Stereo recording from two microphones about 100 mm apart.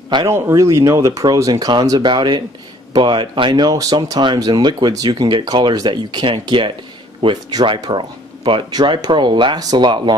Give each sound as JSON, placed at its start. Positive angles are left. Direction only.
{"t": 0.3, "sound": "speech", "side_deg": -30}